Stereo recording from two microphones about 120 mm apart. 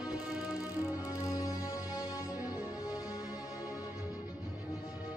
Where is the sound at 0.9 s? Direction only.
25° left (ahead or behind).